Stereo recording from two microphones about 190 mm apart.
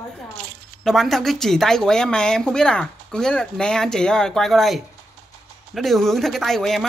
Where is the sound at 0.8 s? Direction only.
Centre (ahead or behind).